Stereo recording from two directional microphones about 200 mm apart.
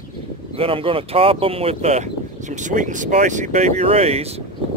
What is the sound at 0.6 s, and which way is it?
Speech, 25° right (ahead or behind).